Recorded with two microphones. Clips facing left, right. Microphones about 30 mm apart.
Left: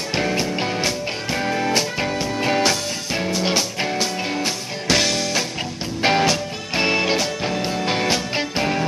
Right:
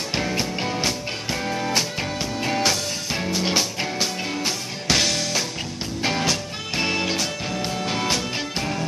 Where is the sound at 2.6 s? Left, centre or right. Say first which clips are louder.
Left 2 dB; centre.